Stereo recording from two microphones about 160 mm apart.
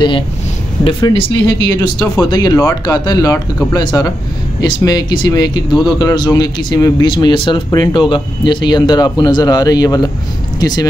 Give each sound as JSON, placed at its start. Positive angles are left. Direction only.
{"t": 0.8, "sound": "speech", "side_deg": 35}